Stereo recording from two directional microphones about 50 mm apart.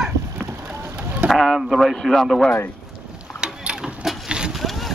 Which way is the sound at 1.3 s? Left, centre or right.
Centre.